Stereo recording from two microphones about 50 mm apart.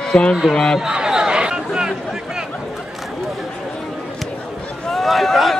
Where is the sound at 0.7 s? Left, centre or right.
Centre.